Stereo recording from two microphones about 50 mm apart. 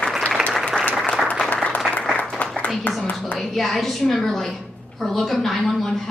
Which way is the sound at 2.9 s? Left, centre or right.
Left.